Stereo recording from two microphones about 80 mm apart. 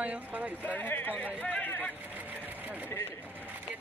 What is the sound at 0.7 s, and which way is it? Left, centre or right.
Speech, left.